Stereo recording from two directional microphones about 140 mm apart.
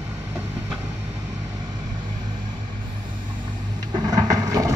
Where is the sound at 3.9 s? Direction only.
30° right (ahead or behind).